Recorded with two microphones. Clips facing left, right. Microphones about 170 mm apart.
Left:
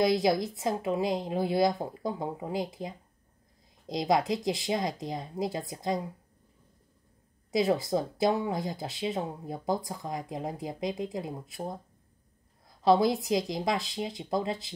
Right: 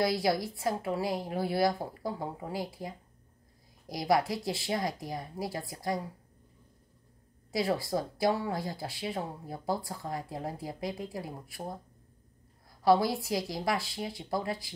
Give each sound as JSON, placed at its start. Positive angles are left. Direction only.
{"t": 0.0, "sound": "speech", "side_deg": 20}
{"t": 7.5, "sound": "speech", "side_deg": 20}
{"t": 12.8, "sound": "speech", "side_deg": 20}